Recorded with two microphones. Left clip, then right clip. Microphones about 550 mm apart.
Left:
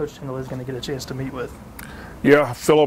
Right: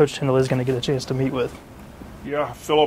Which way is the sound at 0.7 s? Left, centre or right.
Right.